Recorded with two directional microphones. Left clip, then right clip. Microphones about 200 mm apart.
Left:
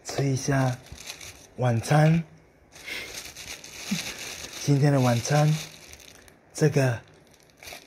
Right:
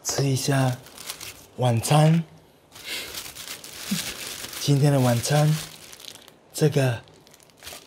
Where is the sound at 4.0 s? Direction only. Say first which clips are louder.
Right 2 dB; 20° right (ahead or behind).